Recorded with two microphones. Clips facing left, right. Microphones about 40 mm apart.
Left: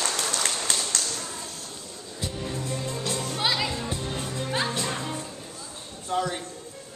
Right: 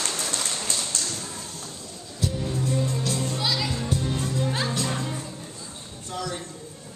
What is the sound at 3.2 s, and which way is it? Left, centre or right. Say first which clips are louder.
Music: even; left.